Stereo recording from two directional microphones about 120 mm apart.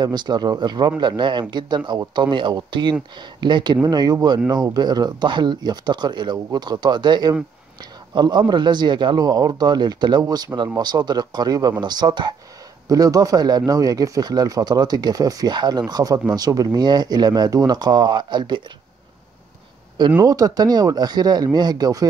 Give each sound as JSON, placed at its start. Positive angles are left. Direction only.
{"t": 0.0, "sound": "speech", "side_deg": -35}
{"t": 20.2, "sound": "speech", "side_deg": -30}